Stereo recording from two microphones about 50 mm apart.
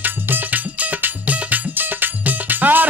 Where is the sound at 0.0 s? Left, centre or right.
Right.